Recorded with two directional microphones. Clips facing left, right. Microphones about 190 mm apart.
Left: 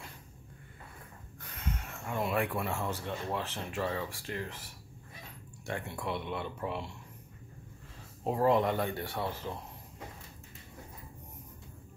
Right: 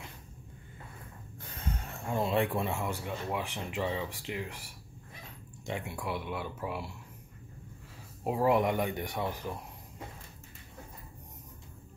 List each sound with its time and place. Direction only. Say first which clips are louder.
1.4 s snort: right 1 dB; 30° right (ahead or behind)
2.0 s speech: right 3 dB; 25° right (ahead or behind); by 7.0 s 5° right (ahead or behind)
8.2 s speech: even; 10° right (ahead or behind)